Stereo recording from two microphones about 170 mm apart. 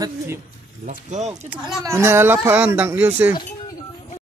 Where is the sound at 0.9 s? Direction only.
45° right (ahead or behind).